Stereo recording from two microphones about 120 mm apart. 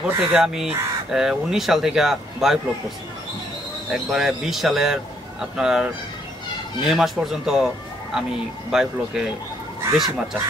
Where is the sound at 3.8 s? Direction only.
5° right (ahead or behind).